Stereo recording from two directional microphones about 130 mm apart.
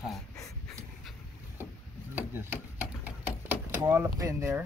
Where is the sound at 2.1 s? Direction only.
15° right (ahead or behind).